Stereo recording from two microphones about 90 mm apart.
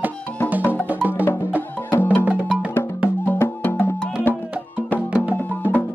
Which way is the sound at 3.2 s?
25° left (ahead or behind).